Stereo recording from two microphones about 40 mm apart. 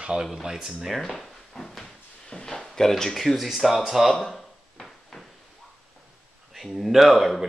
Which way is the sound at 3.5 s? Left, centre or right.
Centre.